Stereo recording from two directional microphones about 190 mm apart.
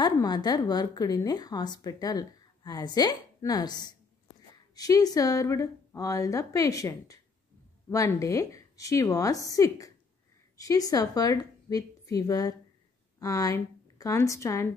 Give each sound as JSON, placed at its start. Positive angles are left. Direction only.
{"t": 0.0, "sound": "a woman's voice", "side_deg": 20}